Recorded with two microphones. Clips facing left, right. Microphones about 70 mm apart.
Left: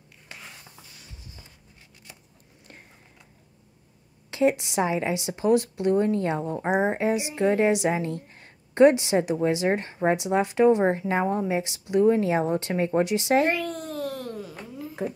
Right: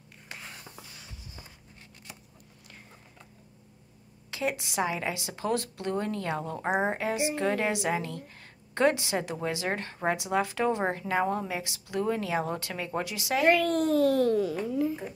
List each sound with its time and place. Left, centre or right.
4.3 s a sound: left
4.6 s speech: left
6.6 s a woman's voice: centre; by 13.5 s left
13.5 s babbling: right